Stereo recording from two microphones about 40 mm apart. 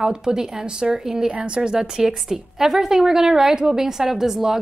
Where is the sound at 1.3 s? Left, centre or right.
Right.